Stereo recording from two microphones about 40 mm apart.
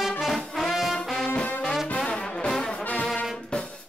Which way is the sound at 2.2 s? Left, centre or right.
Centre.